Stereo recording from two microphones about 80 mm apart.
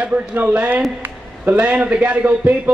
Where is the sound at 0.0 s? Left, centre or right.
Centre.